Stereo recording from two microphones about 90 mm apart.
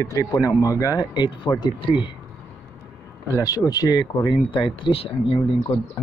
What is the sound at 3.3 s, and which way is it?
Speech, 40° left (ahead or behind).